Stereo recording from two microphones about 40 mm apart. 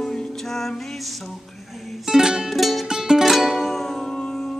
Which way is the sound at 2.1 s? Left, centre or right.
Centre.